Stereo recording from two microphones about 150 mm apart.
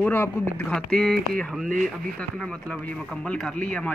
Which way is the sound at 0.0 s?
15° left (ahead or behind).